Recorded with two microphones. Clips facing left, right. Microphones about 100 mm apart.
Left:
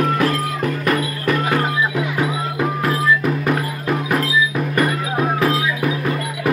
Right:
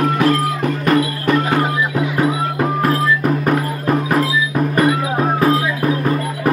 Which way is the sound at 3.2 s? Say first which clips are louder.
Right 3 dB; 40° right (ahead or behind).